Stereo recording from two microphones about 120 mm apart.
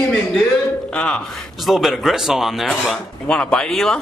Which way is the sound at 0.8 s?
5° left (ahead or behind).